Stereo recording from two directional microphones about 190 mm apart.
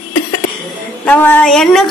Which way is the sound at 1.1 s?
10° left (ahead or behind).